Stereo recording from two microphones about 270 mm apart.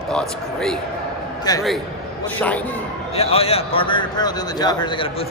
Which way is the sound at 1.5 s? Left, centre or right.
Centre.